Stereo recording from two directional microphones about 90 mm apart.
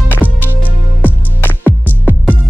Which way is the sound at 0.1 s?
20° left (ahead or behind).